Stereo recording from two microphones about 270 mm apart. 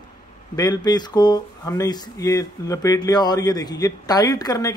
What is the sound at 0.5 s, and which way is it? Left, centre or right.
Speech, centre.